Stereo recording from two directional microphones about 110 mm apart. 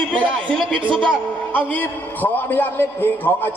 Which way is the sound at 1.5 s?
15° left (ahead or behind).